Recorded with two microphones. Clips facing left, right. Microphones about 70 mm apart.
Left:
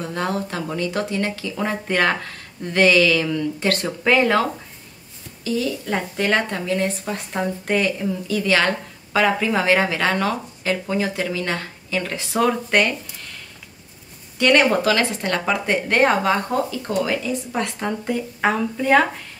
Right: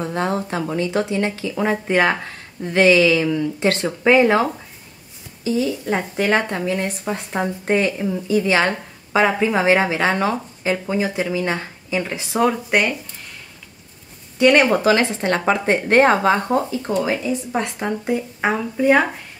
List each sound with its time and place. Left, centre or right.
0.0 s speech: right
14.4 s speech: centre